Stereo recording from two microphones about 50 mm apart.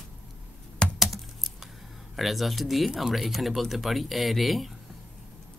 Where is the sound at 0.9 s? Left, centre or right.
Centre.